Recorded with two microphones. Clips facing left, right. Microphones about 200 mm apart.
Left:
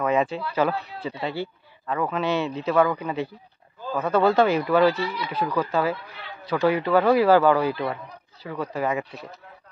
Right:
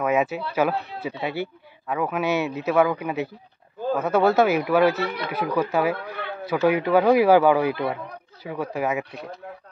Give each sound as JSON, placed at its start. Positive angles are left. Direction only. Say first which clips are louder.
{"t": 0.0, "sound": "a sound", "louder": "right 1 dB", "side_deg": -5}
{"t": 0.6, "sound": "speech", "louder": "right 1 dB", "side_deg": -10}
{"t": 5.0, "sound": "speech", "louder": "right 1 dB", "side_deg": -60}
{"t": 5.3, "sound": "speech", "louder": "right 1 dB", "side_deg": -10}
{"t": 5.9, "sound": "speech", "louder": "right 9 dB", "side_deg": -55}
{"t": 6.7, "sound": "speech", "louder": "right 2 dB", "side_deg": -15}